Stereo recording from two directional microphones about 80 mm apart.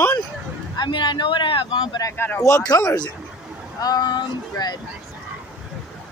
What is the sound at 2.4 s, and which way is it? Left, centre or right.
Speech, left.